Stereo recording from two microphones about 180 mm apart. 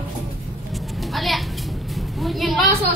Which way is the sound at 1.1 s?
Centre (ahead or behind).